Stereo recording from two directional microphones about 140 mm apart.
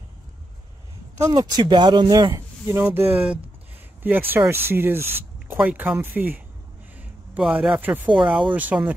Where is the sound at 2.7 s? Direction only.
15° right (ahead or behind).